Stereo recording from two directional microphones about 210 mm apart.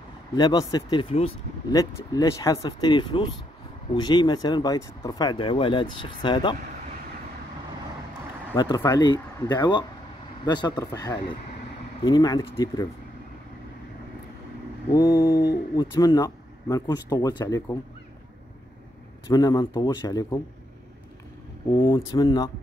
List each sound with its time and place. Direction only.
0.4 s speech: 20° left (ahead or behind)
8.5 s speech: 20° left (ahead or behind)
15.0 s speech: 15° left (ahead or behind)
15.2 s a sound: 50° left (ahead or behind)
15.7 s speech: 20° left (ahead or behind)
19.2 s speech: 20° left (ahead or behind)
21.7 s speech: 15° left (ahead or behind)